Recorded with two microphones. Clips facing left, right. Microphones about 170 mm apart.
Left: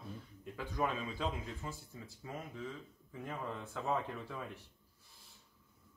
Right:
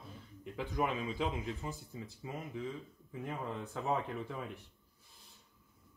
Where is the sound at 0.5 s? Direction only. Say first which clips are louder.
Right 2 dB; 15° right (ahead or behind).